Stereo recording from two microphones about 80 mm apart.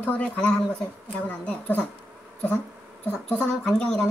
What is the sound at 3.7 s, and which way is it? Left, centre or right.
Speech, centre.